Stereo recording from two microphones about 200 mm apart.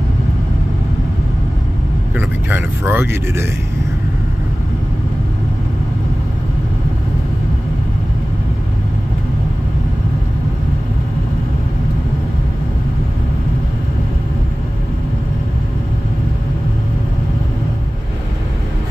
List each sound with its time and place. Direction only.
2.1 s speech: 10° right (ahead or behind)